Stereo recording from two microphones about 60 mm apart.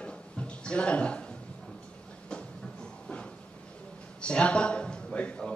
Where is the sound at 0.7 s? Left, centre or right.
Centre.